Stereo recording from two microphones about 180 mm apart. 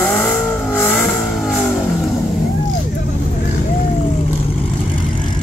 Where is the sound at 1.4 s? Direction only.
Centre (ahead or behind).